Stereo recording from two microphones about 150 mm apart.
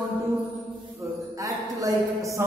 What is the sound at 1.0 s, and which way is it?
Speech, 20° right (ahead or behind).